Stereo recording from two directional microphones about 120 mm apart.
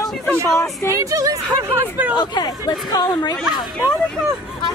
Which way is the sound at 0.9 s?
25° right (ahead or behind).